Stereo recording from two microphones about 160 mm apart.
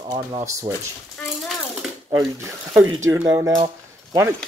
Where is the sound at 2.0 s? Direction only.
20° right (ahead or behind).